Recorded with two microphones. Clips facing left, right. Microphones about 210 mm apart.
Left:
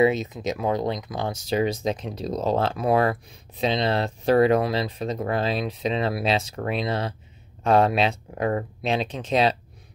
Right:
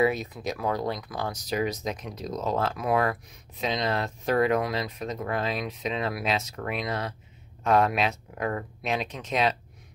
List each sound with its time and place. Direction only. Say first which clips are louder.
0.0 s speech: left 4 dB; 20° left (ahead or behind)